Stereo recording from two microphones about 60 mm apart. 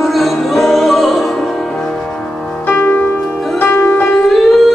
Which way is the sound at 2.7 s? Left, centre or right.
Left.